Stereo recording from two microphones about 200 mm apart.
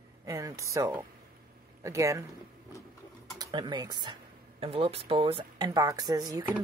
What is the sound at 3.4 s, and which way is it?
Speech, 20° right (ahead or behind).